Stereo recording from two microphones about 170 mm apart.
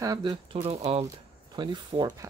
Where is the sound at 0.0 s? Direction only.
25° right (ahead or behind).